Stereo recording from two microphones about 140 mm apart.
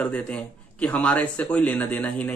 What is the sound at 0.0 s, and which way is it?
Speech, 10° left (ahead or behind).